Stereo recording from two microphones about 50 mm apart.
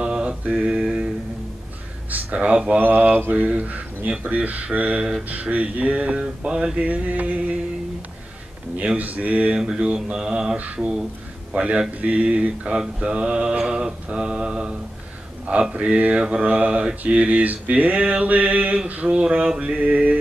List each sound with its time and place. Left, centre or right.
0.0 s mantra: right
2.3 s mantra: right
2.8 s mantra: right; by 6.8 s centre
6.8 s mantra: right
8.7 s mantra: right
9.6 s mantra: centre
19.8 s mantra: right